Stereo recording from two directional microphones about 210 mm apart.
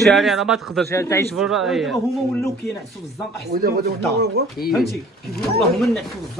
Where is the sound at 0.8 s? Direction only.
15° left (ahead or behind).